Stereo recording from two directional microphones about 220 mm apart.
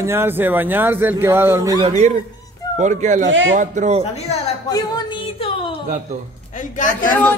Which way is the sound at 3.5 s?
35° right (ahead or behind).